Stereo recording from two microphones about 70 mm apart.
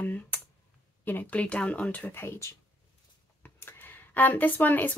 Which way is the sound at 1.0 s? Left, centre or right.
Left.